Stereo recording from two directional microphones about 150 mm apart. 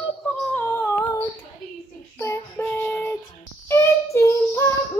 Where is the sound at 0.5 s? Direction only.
15° left (ahead or behind).